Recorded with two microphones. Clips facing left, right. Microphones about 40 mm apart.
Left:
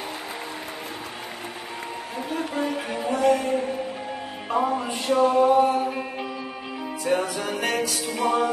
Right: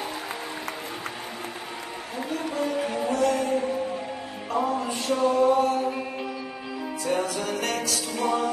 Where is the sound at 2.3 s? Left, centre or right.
Centre.